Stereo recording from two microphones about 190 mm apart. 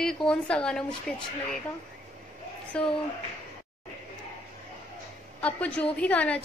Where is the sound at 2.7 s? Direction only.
5° left (ahead or behind).